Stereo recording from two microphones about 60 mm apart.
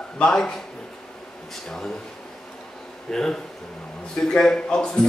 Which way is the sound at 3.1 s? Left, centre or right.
Centre.